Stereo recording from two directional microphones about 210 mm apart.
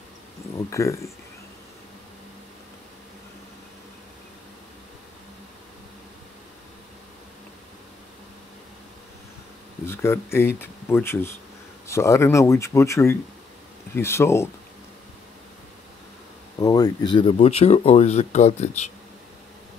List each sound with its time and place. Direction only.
0.7 s speech: 15° left (ahead or behind)
9.8 s speech: 10° left (ahead or behind)
16.5 s speech: 20° left (ahead or behind)